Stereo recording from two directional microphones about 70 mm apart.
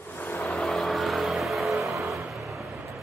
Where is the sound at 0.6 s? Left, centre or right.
Centre.